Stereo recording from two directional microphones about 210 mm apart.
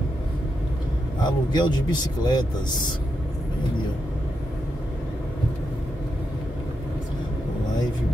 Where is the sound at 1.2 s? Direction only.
20° left (ahead or behind).